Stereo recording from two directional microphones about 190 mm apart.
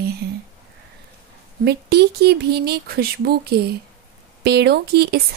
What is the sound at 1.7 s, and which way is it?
Speech, 60° right (ahead or behind).